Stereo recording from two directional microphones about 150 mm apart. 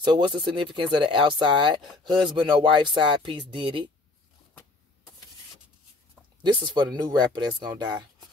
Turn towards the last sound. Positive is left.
turn(degrees=-30)  # may be behind; listen again after turning